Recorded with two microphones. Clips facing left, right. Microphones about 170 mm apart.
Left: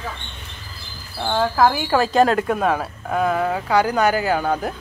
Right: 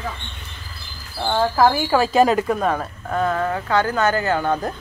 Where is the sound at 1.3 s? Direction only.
Centre (ahead or behind).